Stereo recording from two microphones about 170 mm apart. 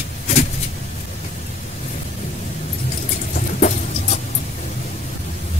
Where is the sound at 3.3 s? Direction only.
45° left (ahead or behind).